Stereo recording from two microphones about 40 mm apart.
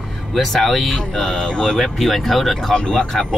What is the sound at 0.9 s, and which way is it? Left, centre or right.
Speech, centre.